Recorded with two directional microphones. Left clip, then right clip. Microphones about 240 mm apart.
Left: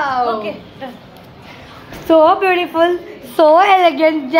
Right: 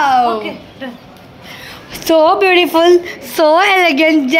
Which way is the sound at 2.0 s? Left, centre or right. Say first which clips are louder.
Right 1 dB; right.